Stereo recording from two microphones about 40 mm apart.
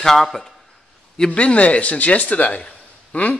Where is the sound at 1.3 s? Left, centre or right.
Left.